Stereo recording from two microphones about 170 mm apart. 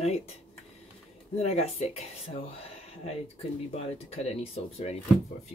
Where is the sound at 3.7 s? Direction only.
35° left (ahead or behind).